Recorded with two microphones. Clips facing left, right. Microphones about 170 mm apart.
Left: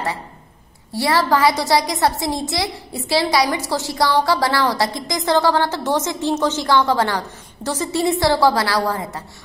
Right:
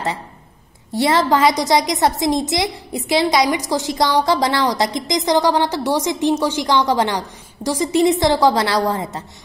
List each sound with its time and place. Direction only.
0.9 s a woman's voice: 20° right (ahead or behind)